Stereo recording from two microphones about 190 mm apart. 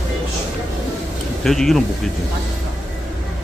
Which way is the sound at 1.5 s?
Centre (ahead or behind).